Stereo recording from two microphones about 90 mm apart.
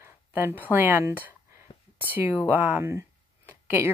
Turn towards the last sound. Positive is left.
turn(degrees=-25)  # may be behind; listen again after turning